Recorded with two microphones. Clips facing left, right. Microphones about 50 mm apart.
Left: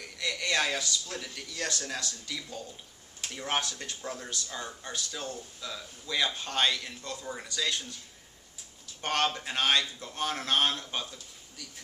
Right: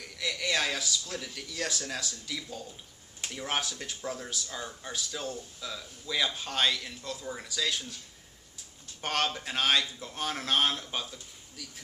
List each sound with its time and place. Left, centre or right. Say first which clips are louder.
0.0 s speech: even; centre
9.0 s speech: left 1 dB; centre